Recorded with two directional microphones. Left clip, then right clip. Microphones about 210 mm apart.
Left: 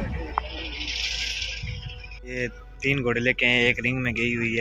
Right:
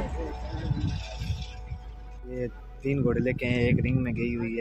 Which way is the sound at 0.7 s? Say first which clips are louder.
Left 11 dB; 40° right (ahead or behind).